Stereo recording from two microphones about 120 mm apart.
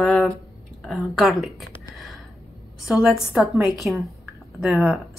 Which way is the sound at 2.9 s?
Centre (ahead or behind).